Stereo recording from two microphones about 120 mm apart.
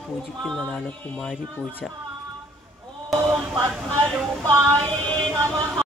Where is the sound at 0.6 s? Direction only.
10° left (ahead or behind).